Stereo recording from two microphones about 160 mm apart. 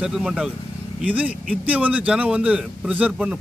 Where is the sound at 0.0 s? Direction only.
5° right (ahead or behind).